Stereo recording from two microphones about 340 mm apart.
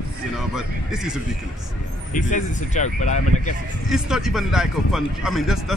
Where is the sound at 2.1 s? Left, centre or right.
Left.